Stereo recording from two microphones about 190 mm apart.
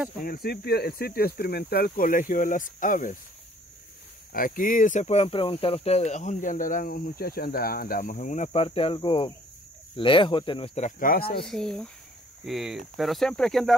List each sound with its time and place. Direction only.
0.2 s speech: 50° left (ahead or behind)
4.3 s speech: 45° left (ahead or behind); by 10.9 s 30° left (ahead or behind)
11.0 s speech: 50° left (ahead or behind)
11.4 s speech: 5° left (ahead or behind)